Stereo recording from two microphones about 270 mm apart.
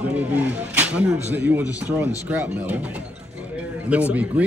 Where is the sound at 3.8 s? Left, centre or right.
Centre.